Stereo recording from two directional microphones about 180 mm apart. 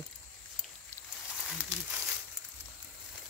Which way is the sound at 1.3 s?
5° right (ahead or behind).